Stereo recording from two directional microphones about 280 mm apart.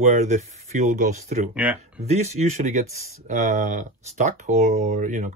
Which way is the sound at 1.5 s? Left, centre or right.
Centre.